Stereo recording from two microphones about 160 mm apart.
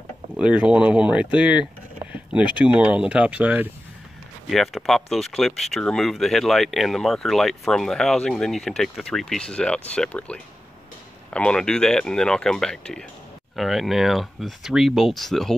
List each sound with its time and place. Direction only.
0.4 s speech: 5° right (ahead or behind)